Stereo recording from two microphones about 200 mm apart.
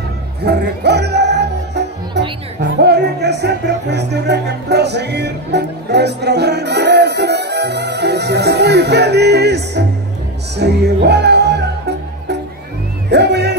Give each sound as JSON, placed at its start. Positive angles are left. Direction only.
{"t": 0.4, "sound": "music", "side_deg": -55}
{"t": 2.6, "sound": "speech", "side_deg": -55}
{"t": 13.1, "sound": "music", "side_deg": -55}